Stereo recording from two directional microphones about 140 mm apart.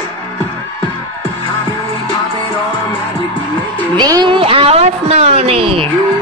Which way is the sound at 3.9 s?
30° right (ahead or behind).